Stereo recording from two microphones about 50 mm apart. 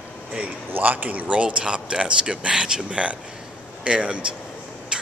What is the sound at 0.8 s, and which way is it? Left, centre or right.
A man's voice, right.